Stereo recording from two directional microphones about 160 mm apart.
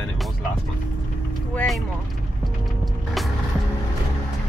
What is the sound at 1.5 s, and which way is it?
Speech, centre (ahead or behind).